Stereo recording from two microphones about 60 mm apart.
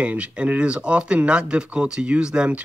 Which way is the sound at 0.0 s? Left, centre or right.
Right.